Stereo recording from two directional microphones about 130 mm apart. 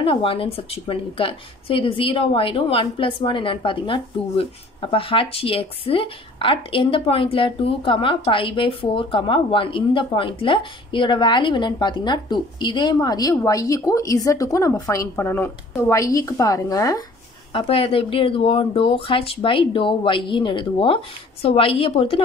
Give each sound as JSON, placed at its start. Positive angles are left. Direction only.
{"t": 0.0, "sound": "a woman's voice", "side_deg": 40}
{"t": 17.5, "sound": "speech", "side_deg": 45}